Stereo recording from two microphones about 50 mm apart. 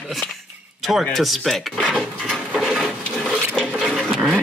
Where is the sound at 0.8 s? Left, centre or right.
Centre.